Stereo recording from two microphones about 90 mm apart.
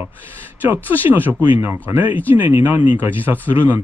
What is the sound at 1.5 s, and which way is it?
Speech, 25° right (ahead or behind).